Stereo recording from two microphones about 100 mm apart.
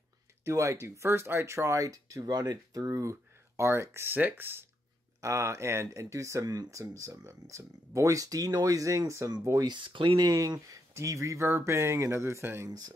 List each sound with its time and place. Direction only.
0.5 s speech: 30° right (ahead or behind)
9.7 s speech: 55° right (ahead or behind); by 12.6 s 25° right (ahead or behind)
12.6 s speech: 40° right (ahead or behind)